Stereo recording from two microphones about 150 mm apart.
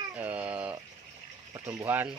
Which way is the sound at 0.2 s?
10° right (ahead or behind).